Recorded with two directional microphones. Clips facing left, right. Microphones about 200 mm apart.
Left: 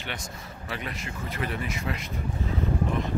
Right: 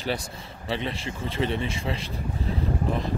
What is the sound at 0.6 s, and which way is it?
A man's voice, 25° right (ahead or behind).